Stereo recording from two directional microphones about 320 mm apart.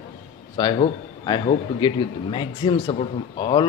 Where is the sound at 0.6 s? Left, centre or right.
Centre.